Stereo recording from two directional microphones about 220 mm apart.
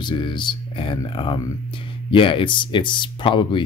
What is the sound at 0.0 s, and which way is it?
Speech, 20° left (ahead or behind).